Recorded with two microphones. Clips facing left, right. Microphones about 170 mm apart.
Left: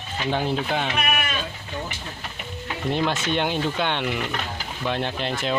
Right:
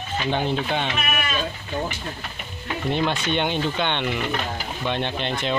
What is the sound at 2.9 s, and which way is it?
Speech, centre (ahead or behind).